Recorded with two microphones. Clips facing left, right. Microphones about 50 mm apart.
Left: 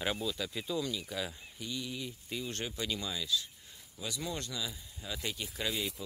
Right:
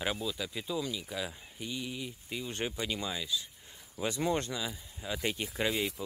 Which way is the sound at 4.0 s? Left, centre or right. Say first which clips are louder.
Right 8 dB; right.